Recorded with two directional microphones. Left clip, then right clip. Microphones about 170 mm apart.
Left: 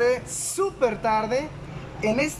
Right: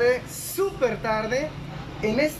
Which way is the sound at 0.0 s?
10° left (ahead or behind).